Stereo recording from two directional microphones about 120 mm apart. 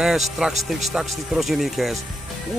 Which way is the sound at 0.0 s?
5° right (ahead or behind).